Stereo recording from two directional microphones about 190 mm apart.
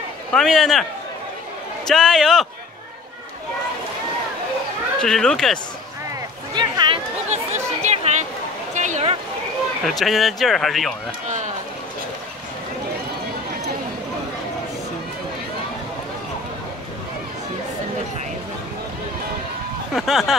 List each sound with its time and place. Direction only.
0.3 s speech: centre (ahead or behind)
1.9 s speech: centre (ahead or behind)
5.0 s speech: 5° left (ahead or behind)
6.5 s a sound: 25° right (ahead or behind)
7.2 s chatter: 35° right (ahead or behind)
8.7 s a sound: 40° right (ahead or behind)
9.8 s speech: centre (ahead or behind)
19.9 s speech: centre (ahead or behind)